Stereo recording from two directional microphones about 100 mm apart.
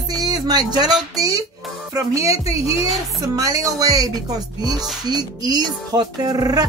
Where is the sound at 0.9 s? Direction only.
5° right (ahead or behind).